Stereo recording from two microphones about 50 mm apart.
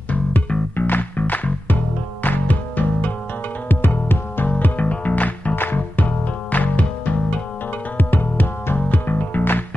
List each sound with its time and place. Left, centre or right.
0.7 s music: left
5.6 s music: left
8.0 s music: left